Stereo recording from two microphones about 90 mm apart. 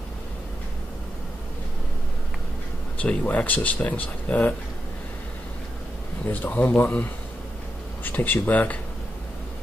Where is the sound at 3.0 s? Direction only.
15° left (ahead or behind).